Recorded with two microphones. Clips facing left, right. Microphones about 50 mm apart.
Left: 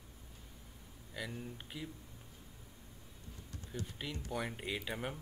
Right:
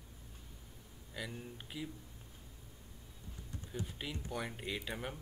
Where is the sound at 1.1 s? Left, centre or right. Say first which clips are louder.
Left 1 dB; centre.